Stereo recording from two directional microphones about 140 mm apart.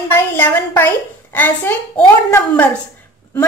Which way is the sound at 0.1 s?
15° left (ahead or behind).